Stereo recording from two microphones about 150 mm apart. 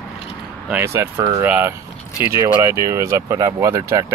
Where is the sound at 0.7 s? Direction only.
15° right (ahead or behind).